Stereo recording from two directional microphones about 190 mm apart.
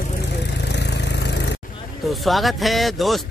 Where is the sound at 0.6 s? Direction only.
65° left (ahead or behind).